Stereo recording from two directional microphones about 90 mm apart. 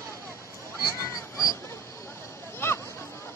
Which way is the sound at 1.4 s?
40° left (ahead or behind).